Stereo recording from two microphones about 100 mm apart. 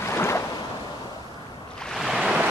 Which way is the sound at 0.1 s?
30° left (ahead or behind).